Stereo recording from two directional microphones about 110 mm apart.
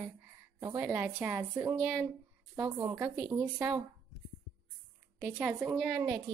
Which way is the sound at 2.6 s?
25° right (ahead or behind).